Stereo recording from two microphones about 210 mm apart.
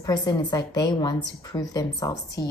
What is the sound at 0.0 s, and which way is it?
A woman's voice, 20° left (ahead or behind).